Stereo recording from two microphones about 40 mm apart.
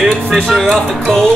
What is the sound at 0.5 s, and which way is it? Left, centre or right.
Speech, centre.